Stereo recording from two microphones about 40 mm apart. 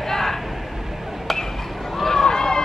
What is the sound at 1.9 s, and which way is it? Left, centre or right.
Run, centre.